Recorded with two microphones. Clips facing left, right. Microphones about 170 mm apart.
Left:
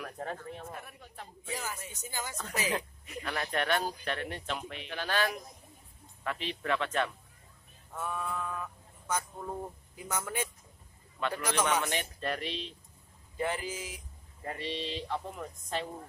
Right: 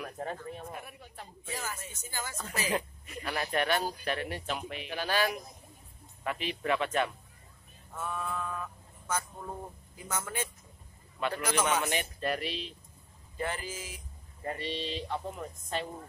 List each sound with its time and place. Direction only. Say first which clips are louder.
0.0 s speech: right 1 dB; 5° right (ahead or behind)
1.5 s speech: left 1 dB; 15° left (ahead or behind)
2.7 s speech: right 2 dB; 10° right (ahead or behind)
7.9 s speech: even; 15° left (ahead or behind)
10.0 s speech: left 1 dB; 15° left (ahead or behind)
11.1 s speech: right 1 dB; 10° right (ahead or behind)
13.4 s speech: left 2 dB; 15° left (ahead or behind)
14.4 s speech: right 1 dB; centre (ahead or behind)